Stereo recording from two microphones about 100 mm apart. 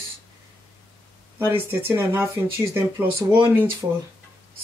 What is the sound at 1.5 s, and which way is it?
Speech, 20° right (ahead or behind).